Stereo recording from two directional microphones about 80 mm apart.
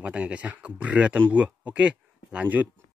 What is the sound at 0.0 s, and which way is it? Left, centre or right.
Speech, centre.